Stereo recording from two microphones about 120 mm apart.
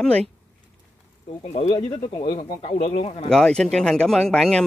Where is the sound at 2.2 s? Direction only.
45° left (ahead or behind).